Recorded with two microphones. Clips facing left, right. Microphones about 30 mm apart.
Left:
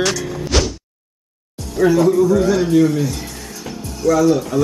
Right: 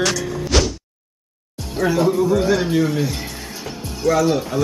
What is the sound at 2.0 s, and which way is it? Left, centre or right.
A man's voice, right.